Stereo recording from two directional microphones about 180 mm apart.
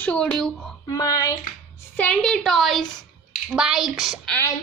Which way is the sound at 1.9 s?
5° left (ahead or behind).